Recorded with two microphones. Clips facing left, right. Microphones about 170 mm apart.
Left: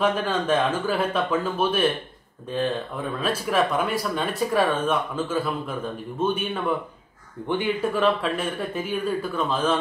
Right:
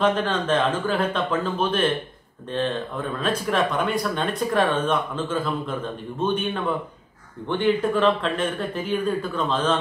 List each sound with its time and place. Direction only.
0.0 s speech: 10° left (ahead or behind)
3.2 s speech: 5° left (ahead or behind)